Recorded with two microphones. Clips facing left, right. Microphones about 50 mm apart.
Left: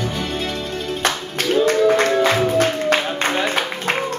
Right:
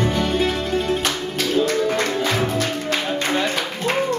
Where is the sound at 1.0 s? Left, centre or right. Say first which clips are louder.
Left 2 dB; left.